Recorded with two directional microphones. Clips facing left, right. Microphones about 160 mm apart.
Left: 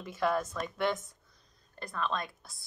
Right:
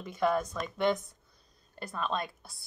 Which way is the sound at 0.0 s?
5° left (ahead or behind).